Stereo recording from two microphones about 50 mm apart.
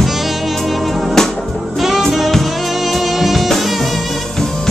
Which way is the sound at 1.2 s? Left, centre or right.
Centre.